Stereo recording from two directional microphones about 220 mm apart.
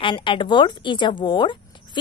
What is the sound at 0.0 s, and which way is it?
Speech, 20° left (ahead or behind).